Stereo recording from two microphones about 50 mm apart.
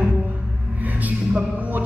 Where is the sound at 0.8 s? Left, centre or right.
Right.